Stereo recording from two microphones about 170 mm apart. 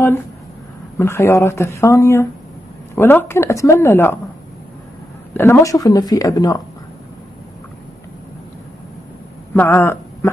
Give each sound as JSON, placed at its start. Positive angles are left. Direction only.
{"t": 0.9, "sound": "speech", "side_deg": 15}
{"t": 5.3, "sound": "speech", "side_deg": 15}
{"t": 9.5, "sound": "speech", "side_deg": 10}